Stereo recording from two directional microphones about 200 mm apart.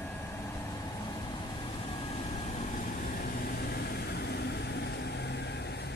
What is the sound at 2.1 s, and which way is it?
Vehicle, 35° left (ahead or behind).